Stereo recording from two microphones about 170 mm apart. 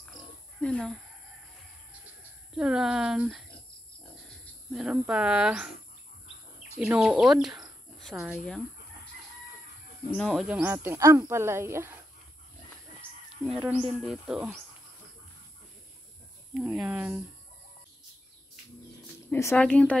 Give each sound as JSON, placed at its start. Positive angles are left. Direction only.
{"t": 0.6, "sound": "speech", "side_deg": 5}
{"t": 2.5, "sound": "speech", "side_deg": -5}
{"t": 4.7, "sound": "speech", "side_deg": -5}
{"t": 6.8, "sound": "speech", "side_deg": -5}
{"t": 10.1, "sound": "speech", "side_deg": 0}
{"t": 13.7, "sound": "speech", "side_deg": -5}
{"t": 16.5, "sound": "speech", "side_deg": -10}
{"t": 19.3, "sound": "a woman's voice", "side_deg": 15}